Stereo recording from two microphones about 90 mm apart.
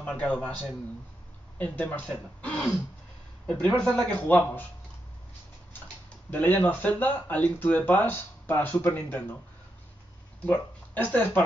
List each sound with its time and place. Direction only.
0.0 s speech: 15° left (ahead or behind)
1.6 s speech: 15° left (ahead or behind)
6.3 s speech: 20° left (ahead or behind)
10.4 s speech: 15° left (ahead or behind)